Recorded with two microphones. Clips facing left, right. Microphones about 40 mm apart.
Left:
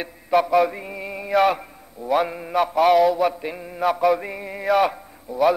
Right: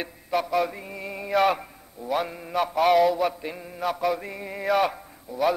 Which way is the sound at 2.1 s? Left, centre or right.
Centre.